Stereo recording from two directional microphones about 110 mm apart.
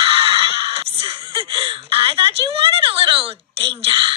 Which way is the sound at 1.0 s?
50° right (ahead or behind).